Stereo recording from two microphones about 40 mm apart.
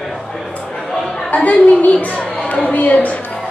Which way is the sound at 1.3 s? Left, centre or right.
Left.